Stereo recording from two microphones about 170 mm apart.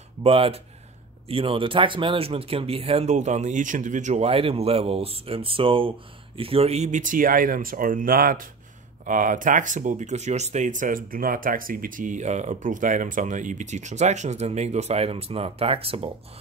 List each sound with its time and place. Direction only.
0.2 s speech: 35° right (ahead or behind)